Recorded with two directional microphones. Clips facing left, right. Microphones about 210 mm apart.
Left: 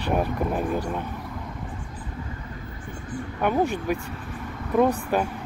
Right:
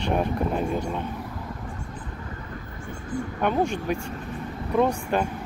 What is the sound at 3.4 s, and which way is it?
Speech, 5° left (ahead or behind).